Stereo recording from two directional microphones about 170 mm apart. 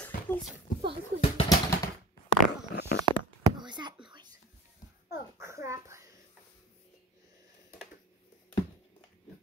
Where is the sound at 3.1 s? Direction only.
25° right (ahead or behind).